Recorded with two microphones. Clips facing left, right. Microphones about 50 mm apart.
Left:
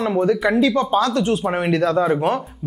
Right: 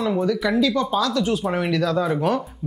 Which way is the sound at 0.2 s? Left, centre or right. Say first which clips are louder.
Left 6 dB; left.